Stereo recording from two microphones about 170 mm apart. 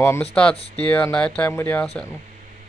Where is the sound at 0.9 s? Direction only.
5° left (ahead or behind).